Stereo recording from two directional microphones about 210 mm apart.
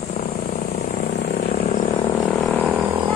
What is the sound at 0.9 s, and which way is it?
Vehicle, 50° left (ahead or behind).